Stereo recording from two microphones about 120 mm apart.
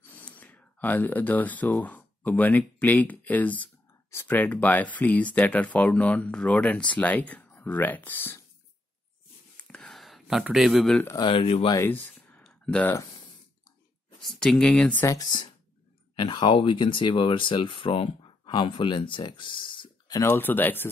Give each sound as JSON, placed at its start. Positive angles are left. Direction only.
{"t": 0.0, "sound": "speech", "side_deg": 15}
{"t": 9.7, "sound": "a sound", "side_deg": 5}
{"t": 11.2, "sound": "speech", "side_deg": 50}
{"t": 11.8, "sound": "a sound", "side_deg": 15}
{"t": 14.2, "sound": "speech", "side_deg": 5}
{"t": 16.2, "sound": "speech", "side_deg": 40}
{"t": 20.1, "sound": "speech", "side_deg": 30}
{"t": 20.3, "sound": "speech", "side_deg": 15}